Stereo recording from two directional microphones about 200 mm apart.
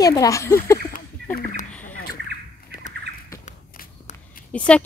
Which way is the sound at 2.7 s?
45° left (ahead or behind).